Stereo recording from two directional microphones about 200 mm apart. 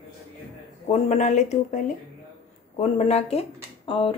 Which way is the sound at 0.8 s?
35° left (ahead or behind).